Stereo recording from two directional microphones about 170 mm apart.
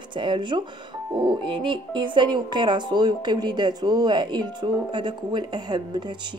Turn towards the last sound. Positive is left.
turn(degrees=-25)  # may be behind; listen again after turning